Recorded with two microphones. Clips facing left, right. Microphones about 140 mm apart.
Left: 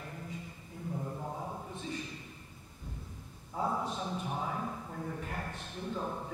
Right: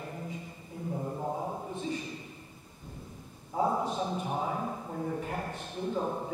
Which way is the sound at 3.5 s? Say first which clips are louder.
Right 5 dB; 20° right (ahead or behind).